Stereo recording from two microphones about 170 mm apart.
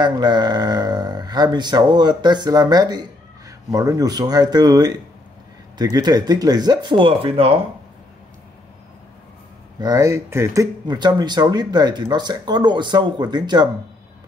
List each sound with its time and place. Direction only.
0.0 s speech: 25° right (ahead or behind)
9.8 s speech: 20° right (ahead or behind)